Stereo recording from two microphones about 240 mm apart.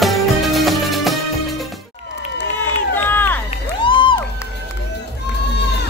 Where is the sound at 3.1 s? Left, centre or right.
Centre.